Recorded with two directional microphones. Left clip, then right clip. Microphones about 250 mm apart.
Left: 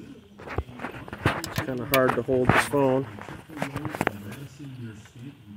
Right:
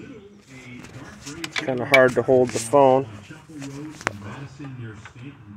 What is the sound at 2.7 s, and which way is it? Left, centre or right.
Speech, left.